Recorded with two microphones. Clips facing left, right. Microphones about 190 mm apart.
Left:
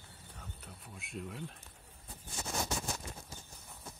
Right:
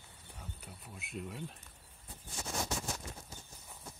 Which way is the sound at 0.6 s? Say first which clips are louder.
Even; centre (ahead or behind).